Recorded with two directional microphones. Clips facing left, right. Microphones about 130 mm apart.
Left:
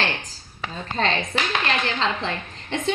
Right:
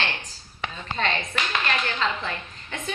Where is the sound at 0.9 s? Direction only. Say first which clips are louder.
Left 4 dB; 35° left (ahead or behind).